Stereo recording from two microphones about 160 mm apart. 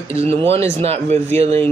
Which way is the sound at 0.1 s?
40° right (ahead or behind).